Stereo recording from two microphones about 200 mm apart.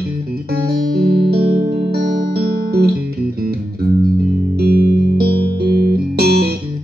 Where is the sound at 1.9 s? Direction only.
50° right (ahead or behind).